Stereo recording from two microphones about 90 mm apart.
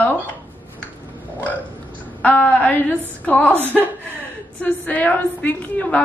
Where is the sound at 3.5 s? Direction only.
25° right (ahead or behind).